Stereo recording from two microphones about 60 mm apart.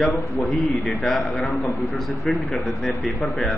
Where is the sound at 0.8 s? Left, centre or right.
Centre.